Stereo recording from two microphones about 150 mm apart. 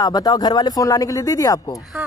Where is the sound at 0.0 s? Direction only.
25° left (ahead or behind).